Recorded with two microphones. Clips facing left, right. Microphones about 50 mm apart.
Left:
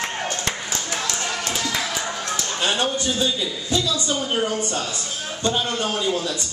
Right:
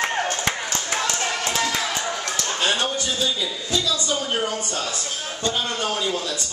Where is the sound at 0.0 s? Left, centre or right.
Centre.